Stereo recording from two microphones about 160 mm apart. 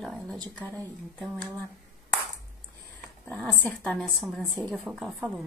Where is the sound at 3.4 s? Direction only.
5° left (ahead or behind).